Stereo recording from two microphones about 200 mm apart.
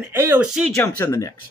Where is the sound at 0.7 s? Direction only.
10° left (ahead or behind).